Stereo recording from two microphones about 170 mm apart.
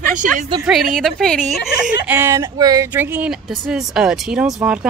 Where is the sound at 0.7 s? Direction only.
Centre (ahead or behind).